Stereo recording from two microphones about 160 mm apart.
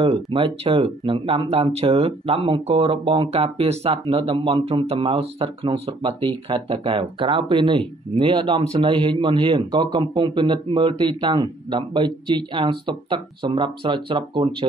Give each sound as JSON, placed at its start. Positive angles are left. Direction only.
{"t": 0.0, "sound": "speech", "side_deg": -35}